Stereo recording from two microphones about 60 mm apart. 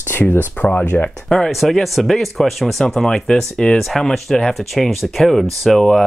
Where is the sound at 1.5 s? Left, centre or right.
Centre.